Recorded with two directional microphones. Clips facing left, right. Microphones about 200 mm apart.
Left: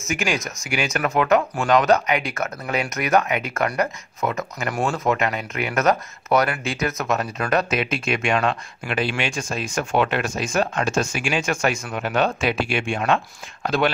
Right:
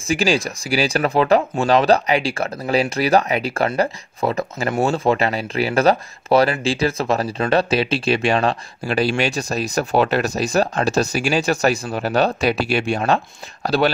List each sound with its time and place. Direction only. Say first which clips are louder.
0.1 s speech: right 6 dB; 30° right (ahead or behind)